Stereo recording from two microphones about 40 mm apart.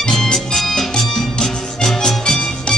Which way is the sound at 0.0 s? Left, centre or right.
Centre.